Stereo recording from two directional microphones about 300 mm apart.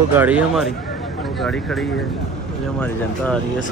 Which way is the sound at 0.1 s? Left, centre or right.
Centre.